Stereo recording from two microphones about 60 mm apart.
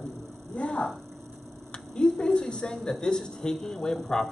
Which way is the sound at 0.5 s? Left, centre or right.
Centre.